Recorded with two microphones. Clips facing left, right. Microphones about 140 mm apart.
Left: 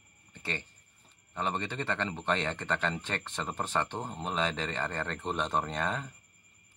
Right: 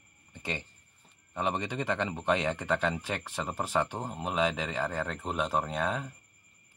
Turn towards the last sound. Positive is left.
turn(degrees=-5)  # may be behind; listen again after turning